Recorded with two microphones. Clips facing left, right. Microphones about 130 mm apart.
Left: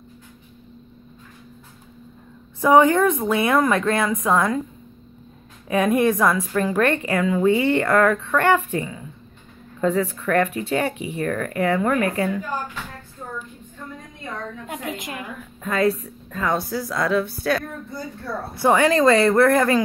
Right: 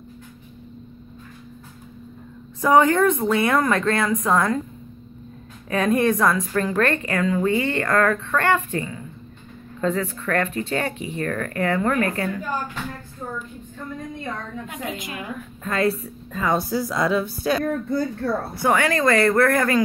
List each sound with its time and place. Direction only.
2.6 s a woman's voice: 15° left (ahead or behind)
5.7 s a woman's voice: 15° left (ahead or behind)
15.6 s a woman's voice: 5° left (ahead or behind)
17.9 s a woman's voice: 70° right (ahead or behind)
18.7 s speech: 25° left (ahead or behind)